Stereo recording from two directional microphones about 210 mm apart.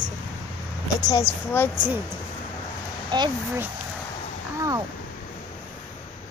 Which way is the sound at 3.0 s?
20° right (ahead or behind).